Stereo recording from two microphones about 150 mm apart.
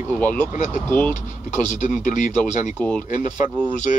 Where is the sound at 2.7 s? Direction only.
10° left (ahead or behind).